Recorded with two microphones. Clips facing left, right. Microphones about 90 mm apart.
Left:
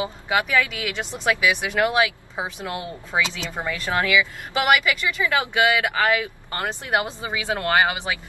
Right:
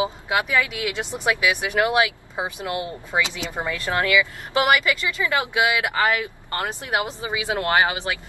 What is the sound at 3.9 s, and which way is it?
Speech, 15° left (ahead or behind).